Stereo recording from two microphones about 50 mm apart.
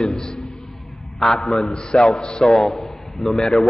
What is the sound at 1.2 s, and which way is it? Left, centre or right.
A man's voice, centre.